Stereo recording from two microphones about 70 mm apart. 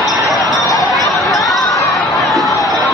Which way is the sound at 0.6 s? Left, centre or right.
Left.